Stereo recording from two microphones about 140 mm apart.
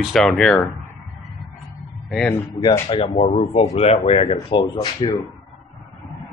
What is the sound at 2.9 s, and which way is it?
Speech, 45° left (ahead or behind).